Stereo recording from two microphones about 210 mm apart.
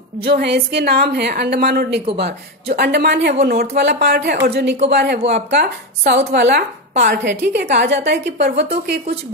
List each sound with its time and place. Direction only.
0.4 s a woman's voice: 50° right (ahead or behind)